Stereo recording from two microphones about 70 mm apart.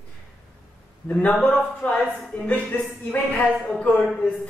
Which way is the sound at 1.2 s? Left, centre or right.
Centre.